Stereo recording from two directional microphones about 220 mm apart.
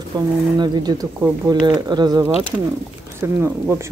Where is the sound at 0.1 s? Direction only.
20° right (ahead or behind).